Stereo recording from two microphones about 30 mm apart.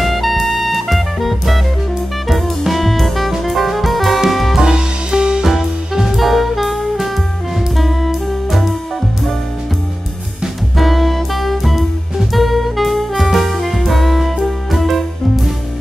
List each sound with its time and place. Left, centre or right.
0.0 s jazz: centre
2.2 s music: centre
4.6 s music: right
5.4 s music: centre
6.1 s jazz: centre
7.7 s music: centre
10.8 s music: centre